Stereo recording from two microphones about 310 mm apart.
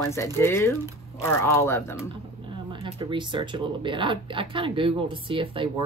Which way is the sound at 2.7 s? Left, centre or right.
Centre.